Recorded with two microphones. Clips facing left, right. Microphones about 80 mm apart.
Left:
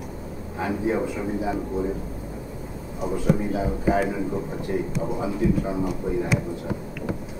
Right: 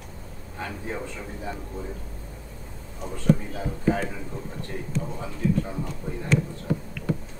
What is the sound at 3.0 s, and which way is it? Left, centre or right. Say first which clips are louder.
A man's voice: left 1 dB; centre.